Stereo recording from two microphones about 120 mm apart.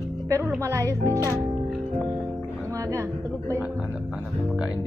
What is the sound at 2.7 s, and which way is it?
Speech, 20° right (ahead or behind).